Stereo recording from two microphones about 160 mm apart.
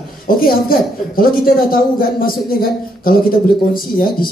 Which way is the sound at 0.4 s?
65° left (ahead or behind).